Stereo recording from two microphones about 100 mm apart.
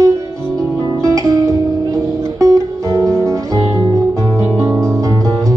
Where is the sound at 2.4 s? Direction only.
35° right (ahead or behind).